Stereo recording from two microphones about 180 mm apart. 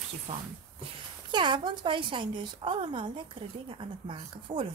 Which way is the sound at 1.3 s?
25° right (ahead or behind).